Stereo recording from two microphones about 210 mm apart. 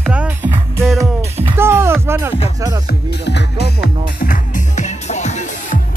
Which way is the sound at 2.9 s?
55° left (ahead or behind).